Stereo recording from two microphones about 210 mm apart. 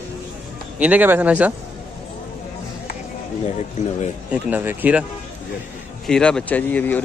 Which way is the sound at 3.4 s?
35° left (ahead or behind).